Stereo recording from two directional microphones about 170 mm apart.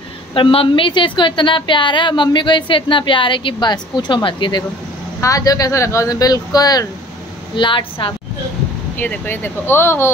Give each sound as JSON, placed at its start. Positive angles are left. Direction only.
{"t": 0.3, "sound": "a woman's voice", "side_deg": 30}
{"t": 8.9, "sound": "speech", "side_deg": 10}